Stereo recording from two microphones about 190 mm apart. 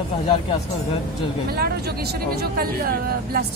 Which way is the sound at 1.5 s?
55° right (ahead or behind).